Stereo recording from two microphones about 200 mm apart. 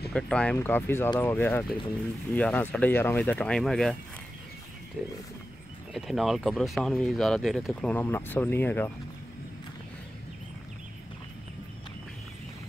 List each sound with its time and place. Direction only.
0.1 s speech: 5° left (ahead or behind)
5.0 s speech: centre (ahead or behind)